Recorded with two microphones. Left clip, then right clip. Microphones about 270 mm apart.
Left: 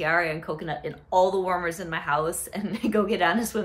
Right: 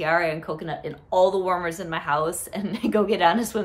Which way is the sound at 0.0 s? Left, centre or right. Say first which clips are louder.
Right 2 dB; centre.